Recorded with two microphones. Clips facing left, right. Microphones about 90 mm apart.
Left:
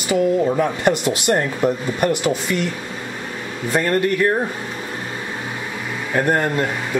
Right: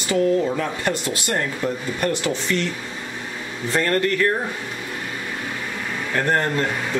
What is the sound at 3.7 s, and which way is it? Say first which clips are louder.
Speech: left 2 dB; 15° left (ahead or behind).